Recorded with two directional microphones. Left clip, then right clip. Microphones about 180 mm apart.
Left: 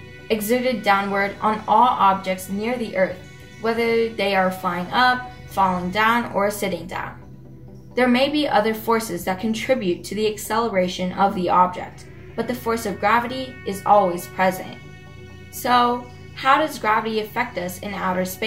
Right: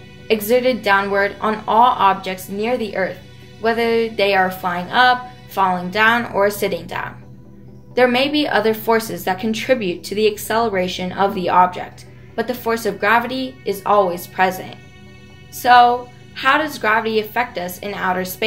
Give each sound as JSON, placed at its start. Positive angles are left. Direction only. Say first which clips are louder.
{"t": 0.3, "sound": "a woman's voice", "louder": "right 5 dB", "side_deg": -45}
{"t": 15.6, "sound": "a woman's voice", "louder": "right 7 dB", "side_deg": -45}